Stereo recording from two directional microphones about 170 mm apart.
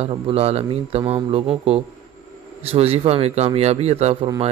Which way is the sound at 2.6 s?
35° right (ahead or behind).